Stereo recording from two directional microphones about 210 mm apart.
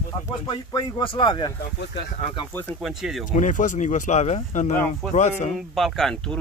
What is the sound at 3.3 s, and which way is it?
Speech, 35° left (ahead or behind).